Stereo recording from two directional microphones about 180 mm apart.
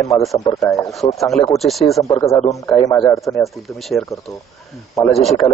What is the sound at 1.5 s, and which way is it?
Speech, centre (ahead or behind).